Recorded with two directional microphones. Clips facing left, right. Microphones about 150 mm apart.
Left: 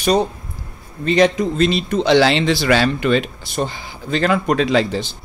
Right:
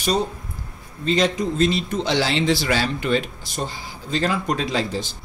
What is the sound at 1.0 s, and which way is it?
Speech, 65° left (ahead or behind).